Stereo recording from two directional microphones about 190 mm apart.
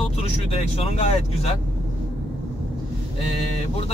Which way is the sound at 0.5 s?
30° left (ahead or behind).